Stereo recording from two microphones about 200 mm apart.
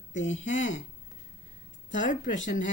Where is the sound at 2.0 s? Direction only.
40° left (ahead or behind).